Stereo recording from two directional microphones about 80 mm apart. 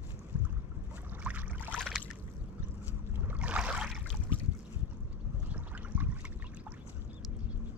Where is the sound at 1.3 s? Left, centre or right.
Centre.